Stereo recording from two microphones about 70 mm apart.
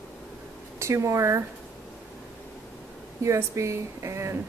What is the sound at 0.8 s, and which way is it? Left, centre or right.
Speech, right.